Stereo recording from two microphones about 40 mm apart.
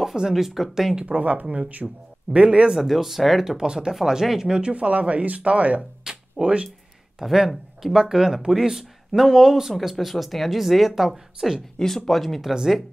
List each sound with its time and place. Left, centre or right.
0.0 s speech: centre
1.0 s speech: right
1.8 s speech: centre
2.3 s speech: right
2.7 s speech: centre
3.5 s speech: centre
5.8 s music: right
7.2 s speech: centre
11.8 s speech: centre